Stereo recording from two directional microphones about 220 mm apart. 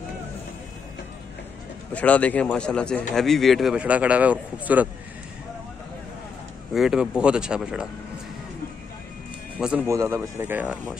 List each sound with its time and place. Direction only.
2.0 s a man's voice: 5° left (ahead or behind)
6.7 s a man's voice: centre (ahead or behind)
9.6 s speech: 5° right (ahead or behind)